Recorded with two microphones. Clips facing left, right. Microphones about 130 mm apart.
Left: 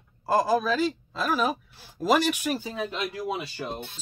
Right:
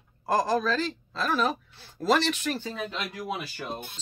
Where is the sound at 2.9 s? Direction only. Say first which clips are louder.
Left 3 dB; 25° left (ahead or behind).